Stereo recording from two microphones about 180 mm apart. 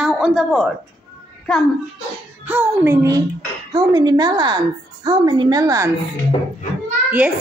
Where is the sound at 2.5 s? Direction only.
10° right (ahead or behind).